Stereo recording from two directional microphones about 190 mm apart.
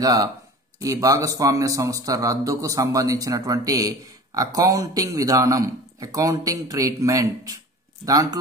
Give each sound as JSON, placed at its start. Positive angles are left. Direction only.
{"t": 0.0, "sound": "a man's voice", "side_deg": -20}